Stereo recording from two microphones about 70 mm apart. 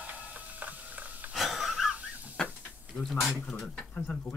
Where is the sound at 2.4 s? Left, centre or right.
Centre.